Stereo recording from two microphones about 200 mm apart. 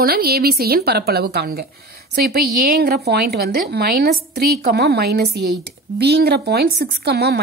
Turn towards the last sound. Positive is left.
turn(degrees=-55)  # may be behind; listen again after turning